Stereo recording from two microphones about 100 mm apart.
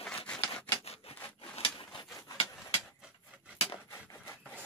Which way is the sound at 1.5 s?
70° left (ahead or behind).